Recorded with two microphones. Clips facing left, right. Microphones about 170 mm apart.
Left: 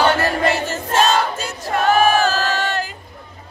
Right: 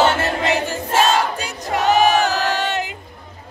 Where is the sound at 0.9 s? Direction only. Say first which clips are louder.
Even; 10° right (ahead or behind).